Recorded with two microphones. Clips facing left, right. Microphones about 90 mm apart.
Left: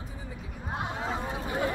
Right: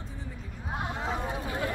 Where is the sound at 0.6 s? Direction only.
Centre (ahead or behind).